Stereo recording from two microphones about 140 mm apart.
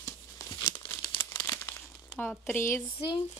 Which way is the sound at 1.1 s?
35° left (ahead or behind).